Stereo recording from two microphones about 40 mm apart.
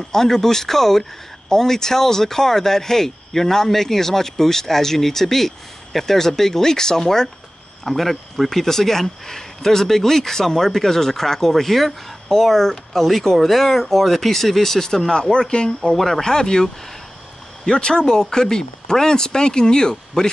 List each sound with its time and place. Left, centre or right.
0.1 s speech: centre
7.8 s speech: centre